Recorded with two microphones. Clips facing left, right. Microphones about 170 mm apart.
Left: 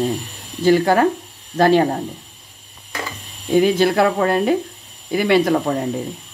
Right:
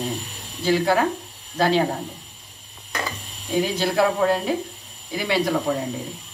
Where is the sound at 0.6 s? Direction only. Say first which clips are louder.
Left 6 dB; 50° left (ahead or behind).